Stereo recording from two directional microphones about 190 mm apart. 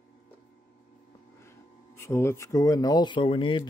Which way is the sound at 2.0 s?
15° left (ahead or behind).